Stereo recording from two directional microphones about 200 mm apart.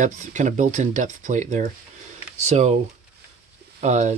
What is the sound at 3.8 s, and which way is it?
Speech, 35° right (ahead or behind).